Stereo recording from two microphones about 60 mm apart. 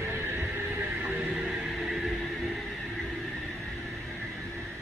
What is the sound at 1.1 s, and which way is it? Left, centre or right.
Music, centre.